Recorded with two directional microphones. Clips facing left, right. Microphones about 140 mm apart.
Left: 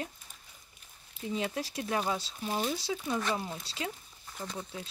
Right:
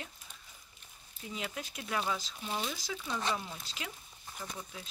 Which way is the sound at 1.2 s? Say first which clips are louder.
Left 7 dB; 30° left (ahead or behind).